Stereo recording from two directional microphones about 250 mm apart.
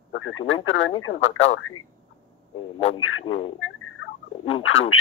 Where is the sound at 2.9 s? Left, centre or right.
Left.